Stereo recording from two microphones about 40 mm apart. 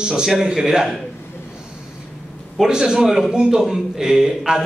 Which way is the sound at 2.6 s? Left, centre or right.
Centre.